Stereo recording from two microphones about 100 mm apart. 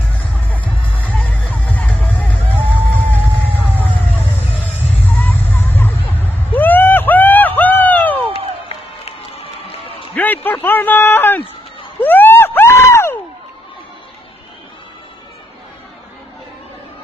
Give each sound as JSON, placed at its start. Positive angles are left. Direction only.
{"t": 1.0, "sound": "music", "side_deg": 15}
{"t": 2.5, "sound": "music", "side_deg": -20}
{"t": 3.7, "sound": "vehicle", "side_deg": -20}
{"t": 5.0, "sound": "vehicle", "side_deg": 20}
{"t": 8.6, "sound": "music", "side_deg": 70}
{"t": 10.1, "sound": "a sound", "side_deg": 20}